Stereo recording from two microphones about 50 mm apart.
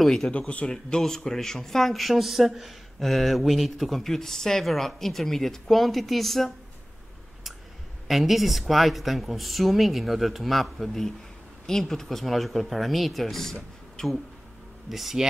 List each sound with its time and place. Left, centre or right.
0.0 s speech: centre
0.3 s speech: left
0.7 s speech: centre
8.1 s speech: centre